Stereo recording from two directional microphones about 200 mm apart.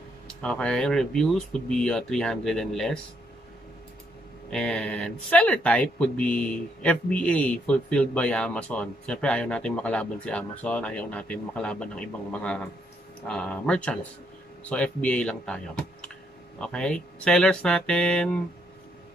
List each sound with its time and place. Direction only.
0.3 s speech: 5° left (ahead or behind)
4.5 s speech: 5° left (ahead or behind)